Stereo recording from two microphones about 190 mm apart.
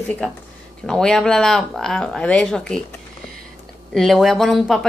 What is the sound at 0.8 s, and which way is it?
Speech, 5° left (ahead or behind).